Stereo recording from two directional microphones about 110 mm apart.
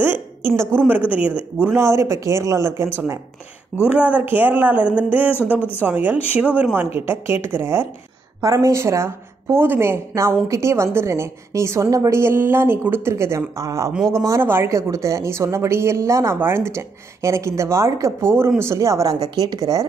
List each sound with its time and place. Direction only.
0.6 s a woman's voice: 20° right (ahead or behind)
1.7 s a woman's voice: 25° right (ahead or behind)
3.8 s a woman's voice: 15° right (ahead or behind); by 19.9 s 30° right (ahead or behind)